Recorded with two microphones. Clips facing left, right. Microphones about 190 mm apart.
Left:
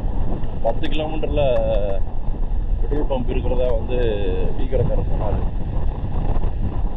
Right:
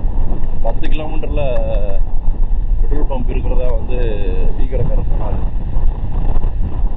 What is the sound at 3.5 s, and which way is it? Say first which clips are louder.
Speech: left 3 dB; 30° left (ahead or behind).